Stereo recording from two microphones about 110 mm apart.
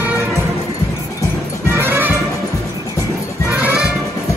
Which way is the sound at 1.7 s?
20° right (ahead or behind).